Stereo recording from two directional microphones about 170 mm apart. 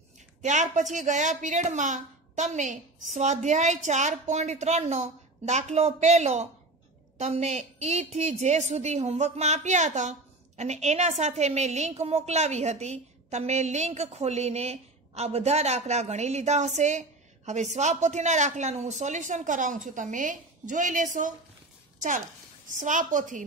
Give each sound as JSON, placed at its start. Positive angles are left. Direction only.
{"t": 0.4, "sound": "a woman's voice", "side_deg": -45}
{"t": 22.8, "sound": "a woman's voice", "side_deg": -50}